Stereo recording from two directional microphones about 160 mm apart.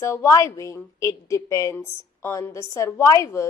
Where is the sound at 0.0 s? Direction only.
15° left (ahead or behind).